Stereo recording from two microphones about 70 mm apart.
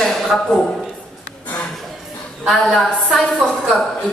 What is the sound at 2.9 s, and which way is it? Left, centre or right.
A woman's voice, centre.